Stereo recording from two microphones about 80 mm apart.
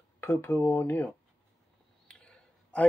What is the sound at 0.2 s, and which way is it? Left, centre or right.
Speech, left.